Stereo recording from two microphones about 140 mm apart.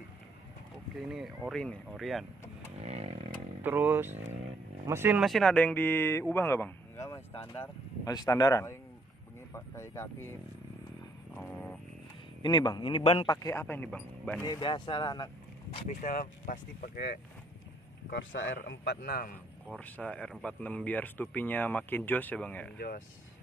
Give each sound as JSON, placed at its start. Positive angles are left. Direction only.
{"t": 0.9, "sound": "speech", "side_deg": 0}
{"t": 2.8, "sound": "chainsaw", "side_deg": -50}
{"t": 3.6, "sound": "speech", "side_deg": -15}
{"t": 5.2, "sound": "speech", "side_deg": 0}
{"t": 6.3, "sound": "a sound", "side_deg": 15}
{"t": 7.5, "sound": "speech", "side_deg": 15}
{"t": 8.1, "sound": "speech", "side_deg": 25}
{"t": 11.3, "sound": "a sound", "side_deg": 10}
{"t": 12.4, "sound": "a man's voice", "side_deg": 35}
{"t": 13.3, "sound": "speech", "side_deg": 20}
{"t": 14.4, "sound": "a man's voice", "side_deg": 30}
{"t": 16.0, "sound": "speech", "side_deg": 75}
{"t": 18.6, "sound": "a man's voice", "side_deg": 90}
{"t": 19.8, "sound": "speech", "side_deg": 10}